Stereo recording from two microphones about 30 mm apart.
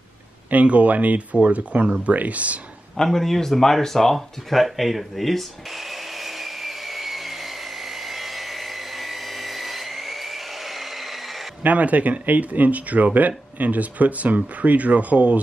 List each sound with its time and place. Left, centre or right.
0.5 s speech: right
3.0 s speech: centre
5.1 s a sound: centre
11.6 s speech: right